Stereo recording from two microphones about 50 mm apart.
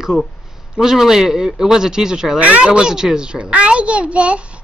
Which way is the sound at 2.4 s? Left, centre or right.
Right.